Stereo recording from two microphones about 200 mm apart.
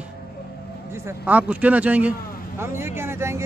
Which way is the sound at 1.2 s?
5° right (ahead or behind).